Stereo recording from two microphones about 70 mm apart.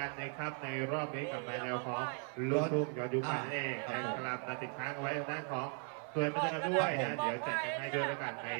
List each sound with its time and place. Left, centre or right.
0.0 s a man's voice: left